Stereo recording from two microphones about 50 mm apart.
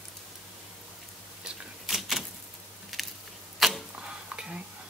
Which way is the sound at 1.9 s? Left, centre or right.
Centre.